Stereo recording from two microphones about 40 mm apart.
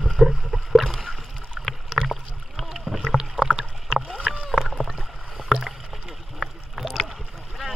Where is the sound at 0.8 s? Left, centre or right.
Centre.